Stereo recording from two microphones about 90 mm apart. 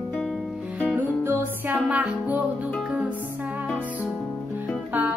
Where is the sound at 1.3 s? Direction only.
20° right (ahead or behind).